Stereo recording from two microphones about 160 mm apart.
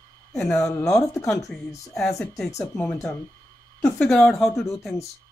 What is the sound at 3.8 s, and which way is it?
Speech, 5° left (ahead or behind).